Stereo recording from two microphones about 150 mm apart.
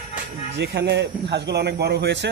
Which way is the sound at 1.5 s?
90° right.